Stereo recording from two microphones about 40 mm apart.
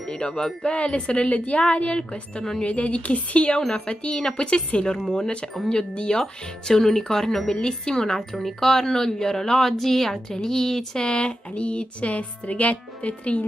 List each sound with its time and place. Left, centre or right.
0.8 s a woman's voice: left